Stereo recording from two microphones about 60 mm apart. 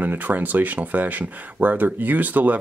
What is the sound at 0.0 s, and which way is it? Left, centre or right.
Speech, right.